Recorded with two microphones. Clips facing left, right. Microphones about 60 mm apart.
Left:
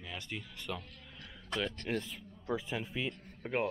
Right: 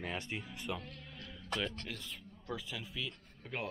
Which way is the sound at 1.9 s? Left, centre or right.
Left.